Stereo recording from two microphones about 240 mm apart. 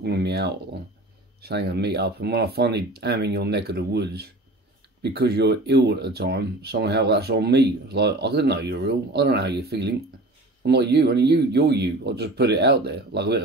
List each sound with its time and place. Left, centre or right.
0.0 s speech: right